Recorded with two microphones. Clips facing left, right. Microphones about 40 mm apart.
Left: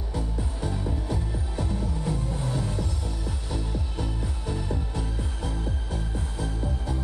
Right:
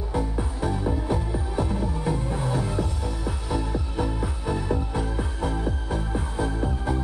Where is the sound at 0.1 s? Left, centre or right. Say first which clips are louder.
Right 5 dB; right.